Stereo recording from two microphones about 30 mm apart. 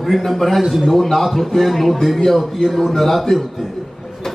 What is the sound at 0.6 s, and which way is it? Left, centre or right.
Speech, centre.